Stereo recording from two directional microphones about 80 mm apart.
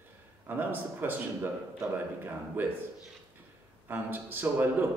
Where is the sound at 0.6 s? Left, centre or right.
Right.